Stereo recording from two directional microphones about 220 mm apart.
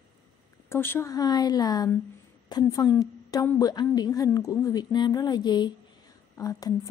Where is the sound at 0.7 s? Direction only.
10° left (ahead or behind).